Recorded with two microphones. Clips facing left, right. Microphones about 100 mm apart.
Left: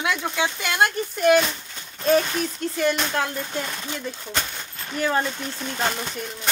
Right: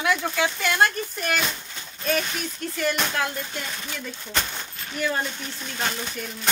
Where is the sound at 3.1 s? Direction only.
25° left (ahead or behind).